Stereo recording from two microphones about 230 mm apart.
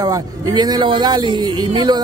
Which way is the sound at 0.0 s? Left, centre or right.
Centre.